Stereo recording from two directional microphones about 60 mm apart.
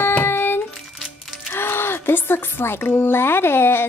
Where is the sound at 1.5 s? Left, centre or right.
Left.